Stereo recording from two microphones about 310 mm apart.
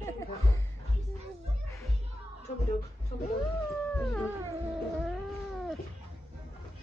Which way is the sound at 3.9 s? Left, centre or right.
Centre.